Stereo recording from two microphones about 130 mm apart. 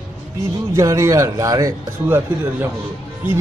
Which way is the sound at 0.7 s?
25° right (ahead or behind).